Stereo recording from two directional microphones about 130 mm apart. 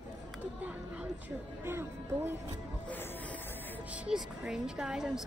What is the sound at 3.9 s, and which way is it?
Speech, 10° right (ahead or behind).